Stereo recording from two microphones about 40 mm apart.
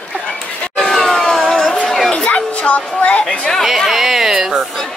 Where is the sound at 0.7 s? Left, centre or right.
Centre.